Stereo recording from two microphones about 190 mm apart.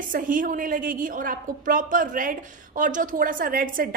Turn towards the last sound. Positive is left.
turn(degrees=-45)  # may be behind; listen again after turning